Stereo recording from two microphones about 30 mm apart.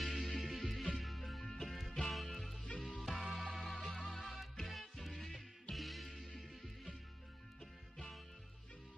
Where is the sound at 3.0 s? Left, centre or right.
Centre.